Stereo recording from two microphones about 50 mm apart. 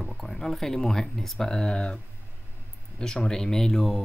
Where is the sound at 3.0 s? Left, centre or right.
Centre.